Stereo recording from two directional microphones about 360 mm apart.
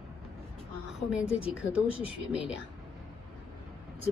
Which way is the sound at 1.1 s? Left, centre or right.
Centre.